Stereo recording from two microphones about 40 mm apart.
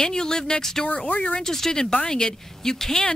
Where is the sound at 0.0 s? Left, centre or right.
Centre.